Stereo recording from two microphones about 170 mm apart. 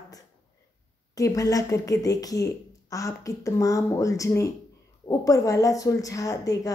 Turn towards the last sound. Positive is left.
turn(degrees=20)  # may be behind; listen again after turning